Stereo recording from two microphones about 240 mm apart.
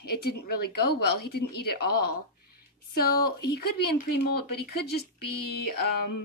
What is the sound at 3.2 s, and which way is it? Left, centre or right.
Speech, left.